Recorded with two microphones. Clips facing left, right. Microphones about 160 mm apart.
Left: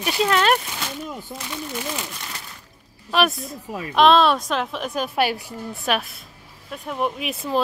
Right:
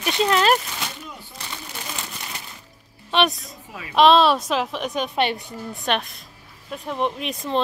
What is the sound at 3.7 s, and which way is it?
Speech, 45° left (ahead or behind).